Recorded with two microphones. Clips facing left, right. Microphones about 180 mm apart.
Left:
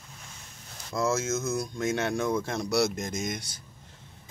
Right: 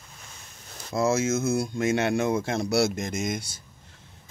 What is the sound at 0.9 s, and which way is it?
Speech, 30° right (ahead or behind).